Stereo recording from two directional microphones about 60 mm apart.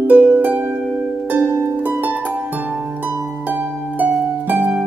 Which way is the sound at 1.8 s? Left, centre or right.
Right.